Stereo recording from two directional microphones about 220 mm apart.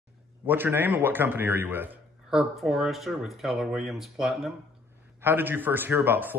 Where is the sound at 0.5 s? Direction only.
10° right (ahead or behind).